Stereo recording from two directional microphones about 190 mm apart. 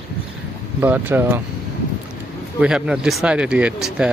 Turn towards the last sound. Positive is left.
turn(degrees=-5)  # may be behind; listen again after turning